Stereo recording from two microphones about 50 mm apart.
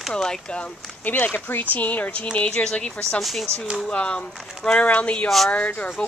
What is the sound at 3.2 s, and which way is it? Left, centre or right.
Speech, centre.